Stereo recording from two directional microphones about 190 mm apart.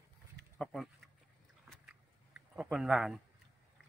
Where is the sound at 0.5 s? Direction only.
5° left (ahead or behind).